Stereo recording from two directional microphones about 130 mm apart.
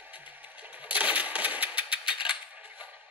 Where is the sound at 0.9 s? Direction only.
10° right (ahead or behind).